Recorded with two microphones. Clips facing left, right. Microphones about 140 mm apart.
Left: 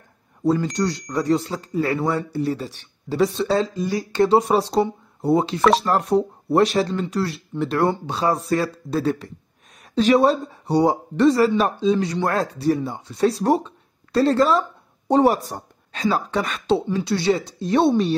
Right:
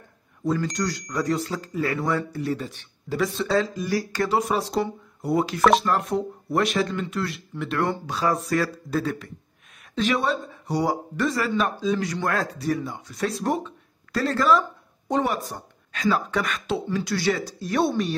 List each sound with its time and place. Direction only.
0.7 s speech: 25° left (ahead or behind)